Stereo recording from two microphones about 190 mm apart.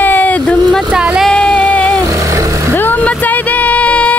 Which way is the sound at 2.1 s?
15° right (ahead or behind).